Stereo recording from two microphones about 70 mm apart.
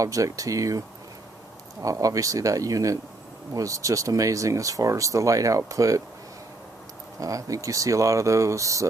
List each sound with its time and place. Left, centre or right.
0.0 s speech: right
7.2 s speech: right